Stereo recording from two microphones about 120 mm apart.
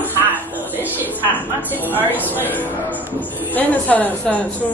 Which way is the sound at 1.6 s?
15° left (ahead or behind).